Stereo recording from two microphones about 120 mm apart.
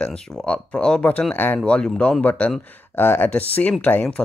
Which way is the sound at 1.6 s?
5° left (ahead or behind).